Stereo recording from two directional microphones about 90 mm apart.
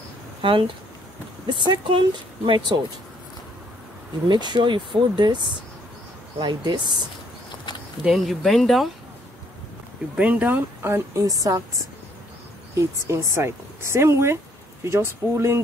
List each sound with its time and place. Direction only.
0.4 s speech: 65° right (ahead or behind)
4.3 s speech: 55° right (ahead or behind)
8.0 s speech: 5° right (ahead or behind)
10.1 s speech: 15° right (ahead or behind)
11.2 s speech: 40° right (ahead or behind)
12.7 s speech: 30° right (ahead or behind)